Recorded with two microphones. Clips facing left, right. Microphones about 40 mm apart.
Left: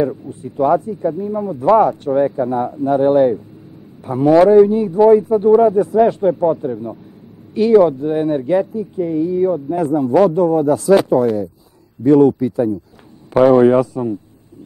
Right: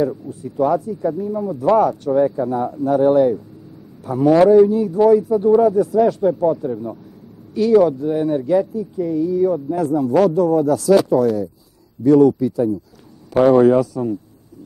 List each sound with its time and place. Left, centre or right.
0.0 s a man's voice: left